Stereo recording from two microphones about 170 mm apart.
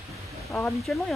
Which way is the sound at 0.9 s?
5° left (ahead or behind).